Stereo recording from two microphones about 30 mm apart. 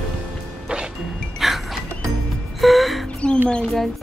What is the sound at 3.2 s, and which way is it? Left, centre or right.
Mouse, left.